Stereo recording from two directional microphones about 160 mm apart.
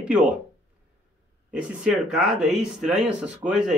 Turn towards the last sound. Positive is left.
turn(degrees=-5)  # may be behind; listen again after turning